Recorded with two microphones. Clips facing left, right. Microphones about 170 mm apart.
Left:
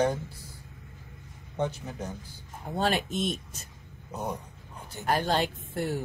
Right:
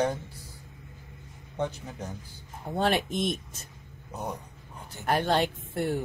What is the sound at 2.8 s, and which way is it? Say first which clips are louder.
Speech: right 1 dB; 60° right (ahead or behind).